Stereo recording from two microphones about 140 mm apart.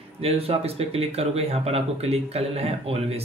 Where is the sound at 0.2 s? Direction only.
45° right (ahead or behind).